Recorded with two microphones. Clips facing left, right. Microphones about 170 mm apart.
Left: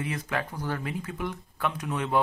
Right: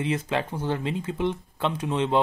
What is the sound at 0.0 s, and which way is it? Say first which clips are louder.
Speech: right 5 dB; 25° right (ahead or behind).